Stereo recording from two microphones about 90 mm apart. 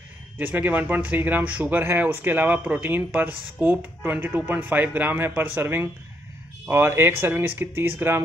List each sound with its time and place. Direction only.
0.4 s speech: 20° right (ahead or behind)